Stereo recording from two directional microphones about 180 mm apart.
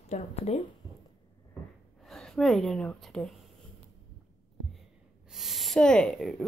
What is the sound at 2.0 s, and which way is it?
Speech, 5° left (ahead or behind).